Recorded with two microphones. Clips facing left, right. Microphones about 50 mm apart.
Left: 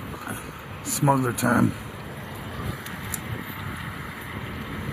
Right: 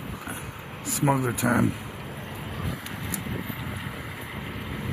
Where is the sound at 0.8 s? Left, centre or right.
Centre.